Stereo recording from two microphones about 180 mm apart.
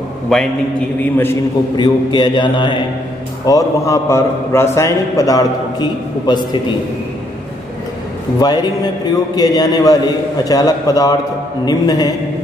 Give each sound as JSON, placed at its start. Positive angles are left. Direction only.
{"t": 0.3, "sound": "a man's voice", "side_deg": 0}
{"t": 1.1, "sound": "a man's voice", "side_deg": 15}
{"t": 1.8, "sound": "a man's voice", "side_deg": 25}
{"t": 8.4, "sound": "a man's voice", "side_deg": 20}